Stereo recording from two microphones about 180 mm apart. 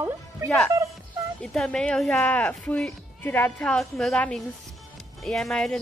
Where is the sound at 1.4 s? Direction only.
5° left (ahead or behind).